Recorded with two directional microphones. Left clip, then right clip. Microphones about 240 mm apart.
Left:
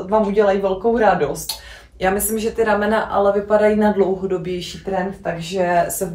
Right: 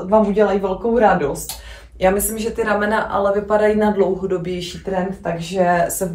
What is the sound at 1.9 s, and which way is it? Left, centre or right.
Speech, centre.